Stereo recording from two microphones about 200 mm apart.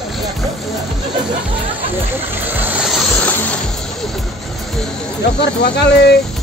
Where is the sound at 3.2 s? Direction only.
5° left (ahead or behind).